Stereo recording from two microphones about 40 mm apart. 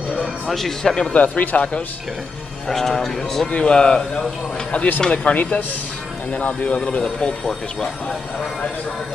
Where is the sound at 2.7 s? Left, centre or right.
Centre.